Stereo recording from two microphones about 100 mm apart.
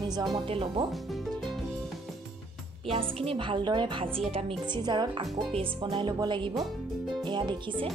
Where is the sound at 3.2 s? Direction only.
60° right (ahead or behind).